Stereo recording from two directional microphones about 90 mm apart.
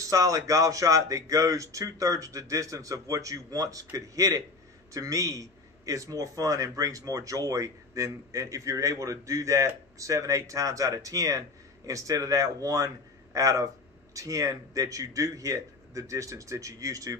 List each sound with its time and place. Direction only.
0.0 s a man's voice: 40° right (ahead or behind)